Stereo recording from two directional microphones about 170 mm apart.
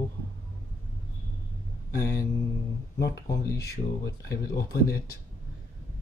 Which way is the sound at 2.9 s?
75° left (ahead or behind).